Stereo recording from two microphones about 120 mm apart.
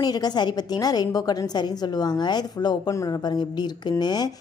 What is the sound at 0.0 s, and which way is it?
A woman's voice, 35° left (ahead or behind).